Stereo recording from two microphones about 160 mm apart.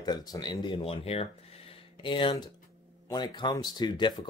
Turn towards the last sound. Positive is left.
turn(degrees=30)  # may be behind; listen again after turning